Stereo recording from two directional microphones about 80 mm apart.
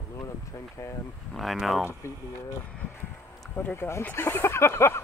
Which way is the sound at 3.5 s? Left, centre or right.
Left.